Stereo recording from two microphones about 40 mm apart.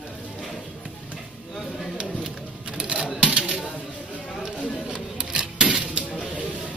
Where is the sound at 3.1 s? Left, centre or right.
Right.